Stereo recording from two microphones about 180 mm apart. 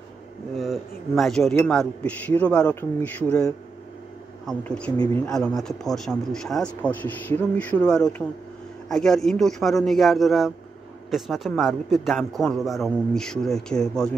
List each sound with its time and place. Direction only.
0.6 s speech: centre (ahead or behind)
4.5 s speech: 5° left (ahead or behind)
4.9 s speech: 20° left (ahead or behind)
5.3 s speech: centre (ahead or behind)